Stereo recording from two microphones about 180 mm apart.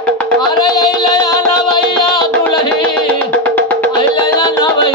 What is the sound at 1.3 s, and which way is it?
Music, 25° left (ahead or behind).